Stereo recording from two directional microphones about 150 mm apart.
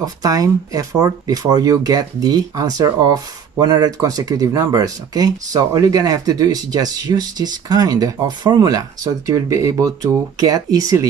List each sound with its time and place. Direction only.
0.0 s speech: 25° right (ahead or behind)